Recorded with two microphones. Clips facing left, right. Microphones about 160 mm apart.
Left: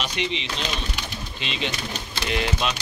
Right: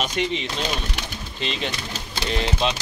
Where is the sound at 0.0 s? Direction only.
45° right (ahead or behind).